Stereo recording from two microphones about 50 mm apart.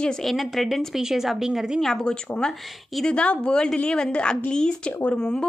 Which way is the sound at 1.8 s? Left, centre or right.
Centre.